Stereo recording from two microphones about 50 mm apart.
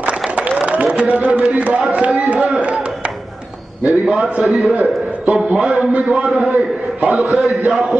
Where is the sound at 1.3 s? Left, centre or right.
Right.